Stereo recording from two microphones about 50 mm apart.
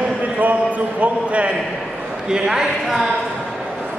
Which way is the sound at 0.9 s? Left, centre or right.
Right.